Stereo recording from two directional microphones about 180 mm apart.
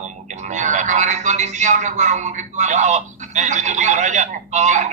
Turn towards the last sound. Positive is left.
turn(degrees=-40)  # may be behind; listen again after turning